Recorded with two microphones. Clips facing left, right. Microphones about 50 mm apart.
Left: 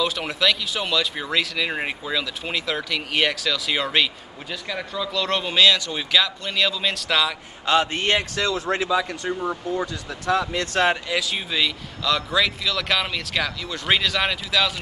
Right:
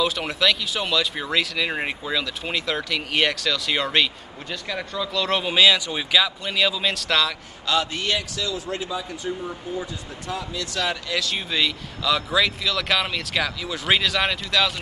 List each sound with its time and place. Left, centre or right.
0.0 s speech: centre
7.6 s a man's voice: left
9.4 s a man's voice: left
11.1 s speech: centre
11.3 s speech: centre